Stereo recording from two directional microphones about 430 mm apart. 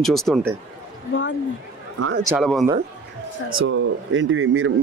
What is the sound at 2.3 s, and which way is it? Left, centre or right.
Speech, centre.